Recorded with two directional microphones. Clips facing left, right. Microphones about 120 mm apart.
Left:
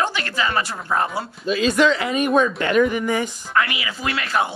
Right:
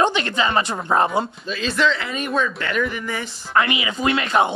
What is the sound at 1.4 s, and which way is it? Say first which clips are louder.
A woman's voice: left 4 dB; 10° left (ahead or behind).